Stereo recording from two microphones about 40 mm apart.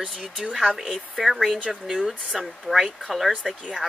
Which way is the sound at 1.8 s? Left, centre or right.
Centre.